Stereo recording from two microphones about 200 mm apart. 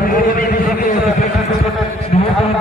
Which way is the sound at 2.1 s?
30° left (ahead or behind).